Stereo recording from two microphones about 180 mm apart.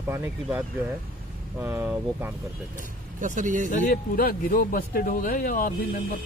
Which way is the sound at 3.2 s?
45° right (ahead or behind).